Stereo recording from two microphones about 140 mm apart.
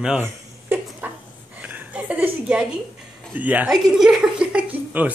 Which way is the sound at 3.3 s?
10° right (ahead or behind).